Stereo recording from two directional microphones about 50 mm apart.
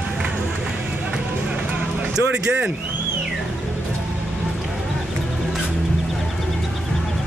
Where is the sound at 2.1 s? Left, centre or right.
Right.